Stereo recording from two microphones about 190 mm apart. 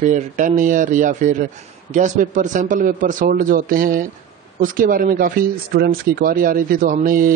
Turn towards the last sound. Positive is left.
turn(degrees=-45)  # may be behind; listen again after turning